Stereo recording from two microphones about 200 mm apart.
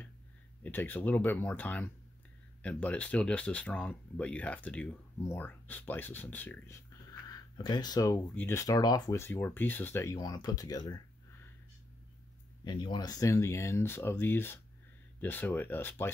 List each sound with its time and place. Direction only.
0.7 s speech: 10° left (ahead or behind)
7.2 s speech: 20° left (ahead or behind)
12.6 s speech: 20° left (ahead or behind)